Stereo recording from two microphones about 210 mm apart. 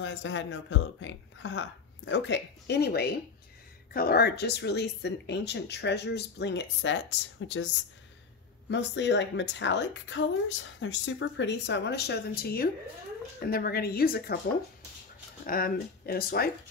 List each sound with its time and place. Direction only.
0.0 s a woman's voice: 60° left (ahead or behind)
8.6 s a woman's voice: 55° left (ahead or behind)
15.4 s speech: 45° left (ahead or behind)